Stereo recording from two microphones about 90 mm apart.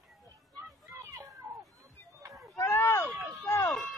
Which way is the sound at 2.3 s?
Centre (ahead or behind).